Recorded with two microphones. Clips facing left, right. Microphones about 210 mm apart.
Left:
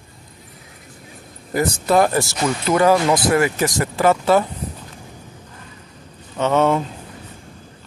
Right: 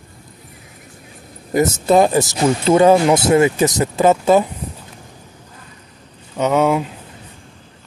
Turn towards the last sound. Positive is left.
turn(degrees=-5)  # may be behind; listen again after turning